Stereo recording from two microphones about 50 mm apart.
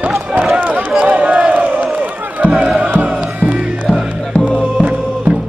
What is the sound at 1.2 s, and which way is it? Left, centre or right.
Crowd, right.